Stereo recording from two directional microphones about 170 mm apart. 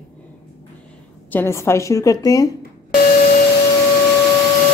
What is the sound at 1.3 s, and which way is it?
Speech, 15° left (ahead or behind).